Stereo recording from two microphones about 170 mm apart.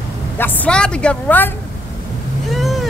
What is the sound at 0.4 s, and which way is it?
A woman's voice, 10° left (ahead or behind).